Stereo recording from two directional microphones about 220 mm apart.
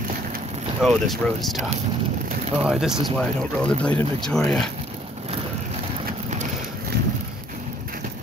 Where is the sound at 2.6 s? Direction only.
Centre (ahead or behind).